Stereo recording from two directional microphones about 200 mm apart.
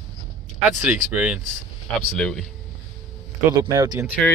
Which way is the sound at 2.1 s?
5° left (ahead or behind).